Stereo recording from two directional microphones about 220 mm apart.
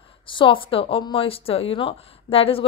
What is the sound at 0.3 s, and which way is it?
A woman's voice, 20° left (ahead or behind).